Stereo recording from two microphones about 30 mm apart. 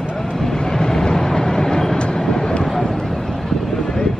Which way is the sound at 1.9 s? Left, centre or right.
Left.